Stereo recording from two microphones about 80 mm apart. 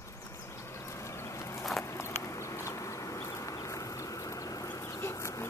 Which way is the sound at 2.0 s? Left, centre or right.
Left.